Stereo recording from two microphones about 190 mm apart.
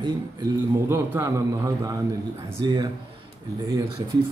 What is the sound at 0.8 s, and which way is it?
Speech, 15° right (ahead or behind).